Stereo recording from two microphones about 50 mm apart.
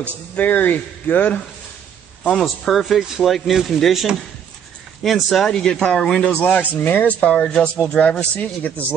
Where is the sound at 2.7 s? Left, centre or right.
Centre.